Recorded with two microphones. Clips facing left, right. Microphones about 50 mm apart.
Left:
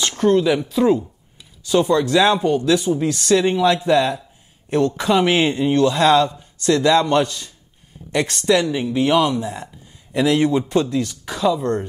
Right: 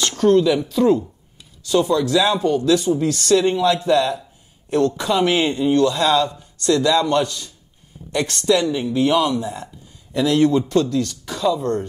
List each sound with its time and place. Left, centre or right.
0.0 s a sound: centre
0.6 s a man's voice: centre
8.1 s a man's voice: centre